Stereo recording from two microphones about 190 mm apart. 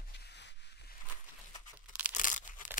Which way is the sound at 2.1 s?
40° left (ahead or behind).